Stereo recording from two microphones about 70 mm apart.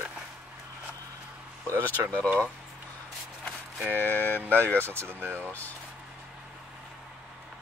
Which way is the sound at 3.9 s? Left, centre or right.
Left.